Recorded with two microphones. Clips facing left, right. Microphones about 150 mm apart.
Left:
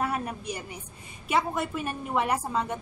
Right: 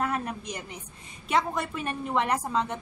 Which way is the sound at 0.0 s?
10° left (ahead or behind).